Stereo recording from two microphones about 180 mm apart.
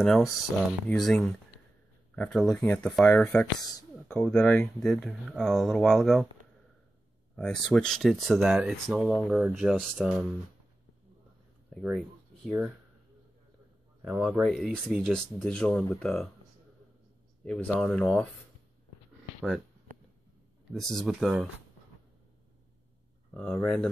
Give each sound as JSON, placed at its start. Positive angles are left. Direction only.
{"t": 0.0, "sound": "speech", "side_deg": 0}
{"t": 7.3, "sound": "speech", "side_deg": 5}
{"t": 11.7, "sound": "a sound", "side_deg": 0}
{"t": 14.0, "sound": "speech", "side_deg": -5}
{"t": 17.5, "sound": "speech", "side_deg": 5}
{"t": 20.7, "sound": "speech", "side_deg": 0}
{"t": 23.3, "sound": "speech", "side_deg": 5}